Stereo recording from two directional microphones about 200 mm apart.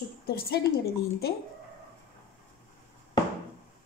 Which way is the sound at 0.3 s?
50° left (ahead or behind).